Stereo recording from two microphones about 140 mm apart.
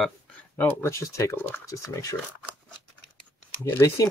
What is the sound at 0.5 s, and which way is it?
Speech, 20° left (ahead or behind).